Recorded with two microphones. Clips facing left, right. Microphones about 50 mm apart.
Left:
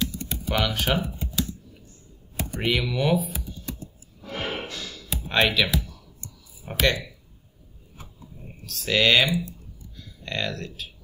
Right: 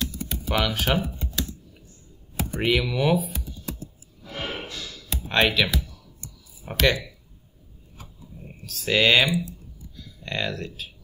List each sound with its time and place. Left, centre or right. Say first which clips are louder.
0.0 s typing: left 1 dB; centre
2.3 s speech: right 2 dB; centre
4.2 s a sound: left 2 dB; left
4.9 s music: right 1 dB; centre
6.6 s speech: right 1 dB; centre
8.5 s speech: right 1 dB; centre